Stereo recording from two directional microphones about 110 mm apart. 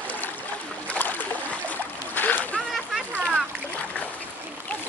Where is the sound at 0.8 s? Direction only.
15° left (ahead or behind).